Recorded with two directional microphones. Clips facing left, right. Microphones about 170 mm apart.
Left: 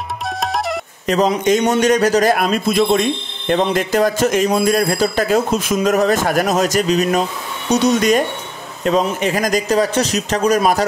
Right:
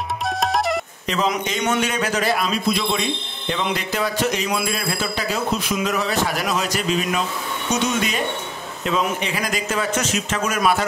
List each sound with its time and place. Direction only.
0.4 s music: centre (ahead or behind)
1.0 s a man's voice: 45° left (ahead or behind)
2.3 s a man's voice: 50° left (ahead or behind)